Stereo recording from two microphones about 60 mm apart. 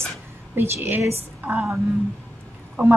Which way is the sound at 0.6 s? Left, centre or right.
Right.